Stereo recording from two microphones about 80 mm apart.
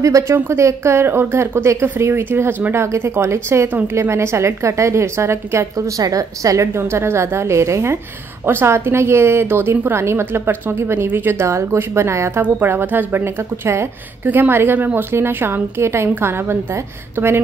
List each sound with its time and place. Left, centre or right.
0.0 s a woman's voice: right
5.9 s a woman's voice: right